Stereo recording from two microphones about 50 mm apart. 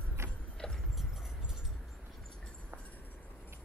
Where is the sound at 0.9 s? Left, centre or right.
Centre.